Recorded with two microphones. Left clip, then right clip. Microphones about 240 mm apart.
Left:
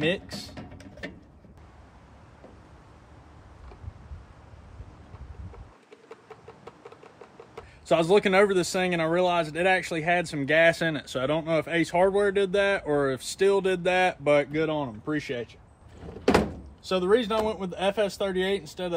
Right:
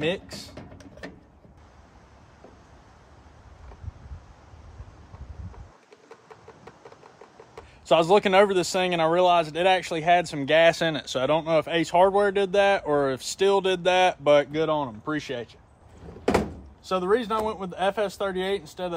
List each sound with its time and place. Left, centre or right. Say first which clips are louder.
0.0 s speech: even; centre
7.8 s speech: right 2 dB; right
16.8 s speech: even; centre